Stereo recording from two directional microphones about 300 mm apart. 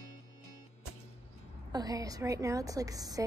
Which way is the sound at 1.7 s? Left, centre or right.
Centre.